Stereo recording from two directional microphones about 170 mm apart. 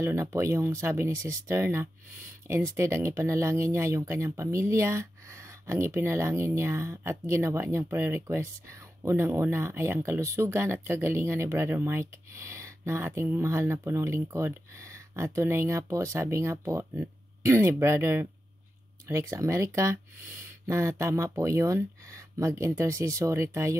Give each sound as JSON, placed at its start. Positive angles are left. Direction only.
{"t": 0.0, "sound": "speech", "side_deg": -15}